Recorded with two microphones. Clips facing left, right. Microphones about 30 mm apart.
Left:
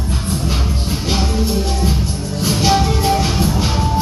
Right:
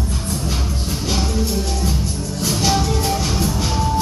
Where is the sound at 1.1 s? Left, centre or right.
Left.